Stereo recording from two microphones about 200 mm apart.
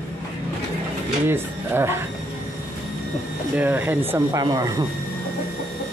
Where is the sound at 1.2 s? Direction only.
10° right (ahead or behind).